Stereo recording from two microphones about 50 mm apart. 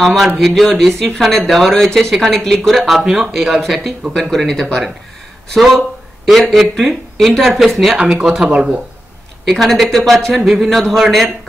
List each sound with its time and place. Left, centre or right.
0.0 s speech: centre
2.8 s speech: centre
8.0 s speech: centre
9.5 s speech: centre